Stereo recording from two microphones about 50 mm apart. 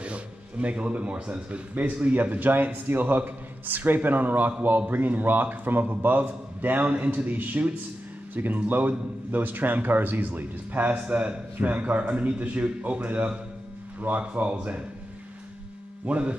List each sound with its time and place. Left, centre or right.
0.0 s speech: right
16.1 s speech: right